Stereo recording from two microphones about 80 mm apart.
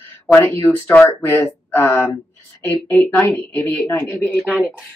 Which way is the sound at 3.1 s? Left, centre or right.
Left.